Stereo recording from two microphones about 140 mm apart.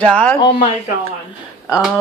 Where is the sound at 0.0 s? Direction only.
5° left (ahead or behind).